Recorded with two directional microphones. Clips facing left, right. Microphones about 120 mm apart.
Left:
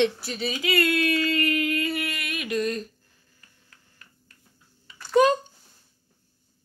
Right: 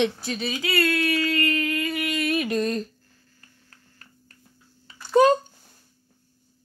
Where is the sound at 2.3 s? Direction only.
35° right (ahead or behind).